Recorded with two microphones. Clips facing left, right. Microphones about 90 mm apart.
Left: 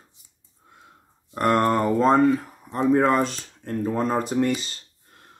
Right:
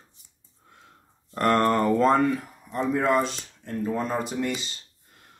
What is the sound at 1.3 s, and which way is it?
Speech, 15° left (ahead or behind).